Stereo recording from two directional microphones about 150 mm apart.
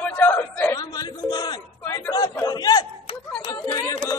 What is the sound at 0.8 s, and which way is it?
Speech, 25° left (ahead or behind).